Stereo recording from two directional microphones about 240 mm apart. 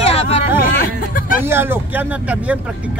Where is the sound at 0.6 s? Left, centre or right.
Left.